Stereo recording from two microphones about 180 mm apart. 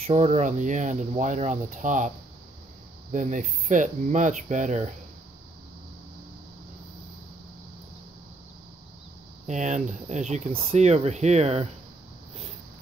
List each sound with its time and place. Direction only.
0.0 s speech: 40° right (ahead or behind)
9.5 s speech: 40° right (ahead or behind)